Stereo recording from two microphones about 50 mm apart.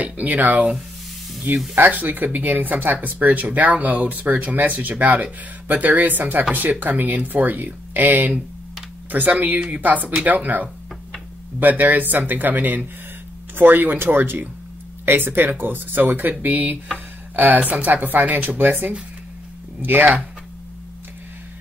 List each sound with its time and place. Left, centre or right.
0.0 s speech: right